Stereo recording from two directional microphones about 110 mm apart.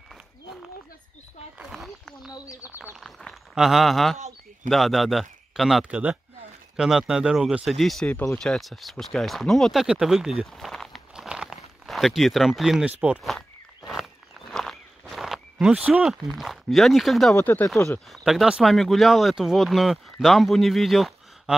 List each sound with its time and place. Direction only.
1.6 s speech: centre (ahead or behind)
8.1 s speech: 15° left (ahead or behind)
8.4 s speech: centre (ahead or behind)
14.5 s a sound: centre (ahead or behind)
17.4 s speech: 20° left (ahead or behind)
17.8 s speech: 5° left (ahead or behind)
18.2 s speech: 5° right (ahead or behind)